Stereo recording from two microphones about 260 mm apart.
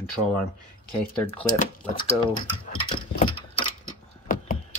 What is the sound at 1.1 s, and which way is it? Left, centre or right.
Speech, centre.